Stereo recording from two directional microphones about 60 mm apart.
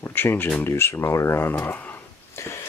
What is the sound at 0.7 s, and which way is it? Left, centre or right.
Speech, left.